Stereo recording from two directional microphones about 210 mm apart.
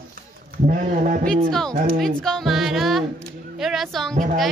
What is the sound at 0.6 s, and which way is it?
Speech, 40° right (ahead or behind).